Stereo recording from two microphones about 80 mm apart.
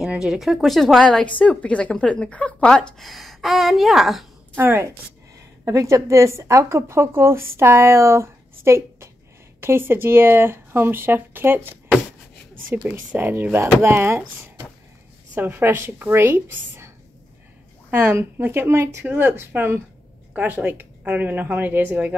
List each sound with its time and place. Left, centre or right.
0.1 s a woman's voice: centre
4.6 s speech: right
5.7 s a woman's voice: right
12.8 s speech: centre
13.3 s a woman's voice: right
17.9 s speech: right